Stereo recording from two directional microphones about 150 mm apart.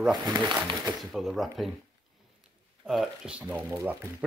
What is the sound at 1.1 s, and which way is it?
Speech, centre (ahead or behind).